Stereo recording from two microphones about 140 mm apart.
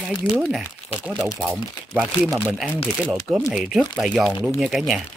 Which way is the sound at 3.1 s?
10° right (ahead or behind).